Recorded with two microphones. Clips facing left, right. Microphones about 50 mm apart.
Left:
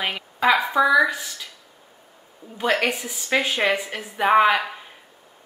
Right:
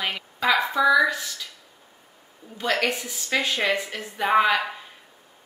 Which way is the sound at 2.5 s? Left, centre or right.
Centre.